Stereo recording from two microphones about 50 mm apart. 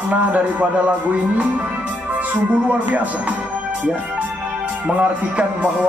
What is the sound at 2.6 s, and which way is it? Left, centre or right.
Speech, right.